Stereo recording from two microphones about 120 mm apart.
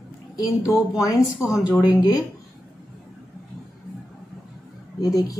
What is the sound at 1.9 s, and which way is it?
Speech, 30° left (ahead or behind).